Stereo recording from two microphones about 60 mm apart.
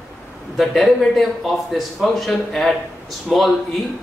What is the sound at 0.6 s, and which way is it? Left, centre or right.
Speech, centre.